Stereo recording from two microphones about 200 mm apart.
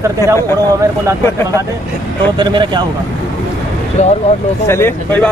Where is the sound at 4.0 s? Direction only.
35° left (ahead or behind).